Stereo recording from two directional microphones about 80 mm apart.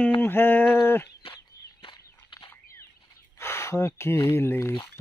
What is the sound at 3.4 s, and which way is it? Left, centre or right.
Speech, left.